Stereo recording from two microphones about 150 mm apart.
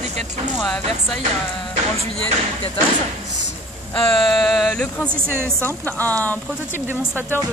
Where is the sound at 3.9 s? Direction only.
5° left (ahead or behind).